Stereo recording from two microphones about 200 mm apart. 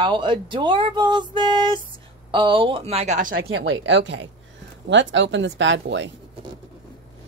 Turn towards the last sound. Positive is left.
turn(degrees=-65)  # may be behind; listen again after turning